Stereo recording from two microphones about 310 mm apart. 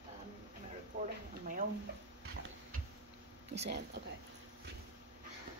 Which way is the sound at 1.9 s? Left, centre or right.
Right.